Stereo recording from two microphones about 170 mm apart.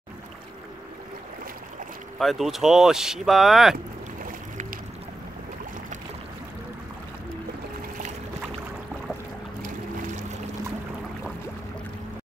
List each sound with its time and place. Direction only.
2.1 s speech: centre (ahead or behind)
3.7 s boat: 55° right (ahead or behind)